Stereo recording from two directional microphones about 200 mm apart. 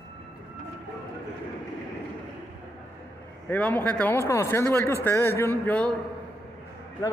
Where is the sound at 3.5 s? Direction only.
5° left (ahead or behind).